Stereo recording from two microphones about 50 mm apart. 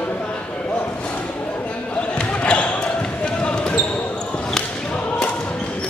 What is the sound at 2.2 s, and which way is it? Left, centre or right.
Basketball bounce, left.